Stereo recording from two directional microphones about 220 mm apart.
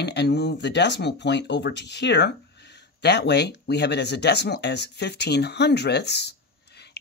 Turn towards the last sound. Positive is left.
turn(degrees=50)  # may be behind; listen again after turning